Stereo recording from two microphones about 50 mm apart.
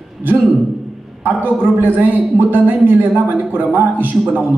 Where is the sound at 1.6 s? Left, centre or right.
Right.